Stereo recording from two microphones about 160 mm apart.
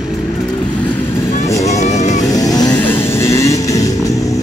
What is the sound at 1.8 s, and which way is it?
Vehicle, 45° left (ahead or behind).